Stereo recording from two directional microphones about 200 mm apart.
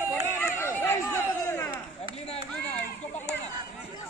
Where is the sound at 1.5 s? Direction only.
10° left (ahead or behind).